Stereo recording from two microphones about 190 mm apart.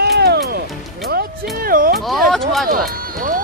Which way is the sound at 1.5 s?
50° right (ahead or behind).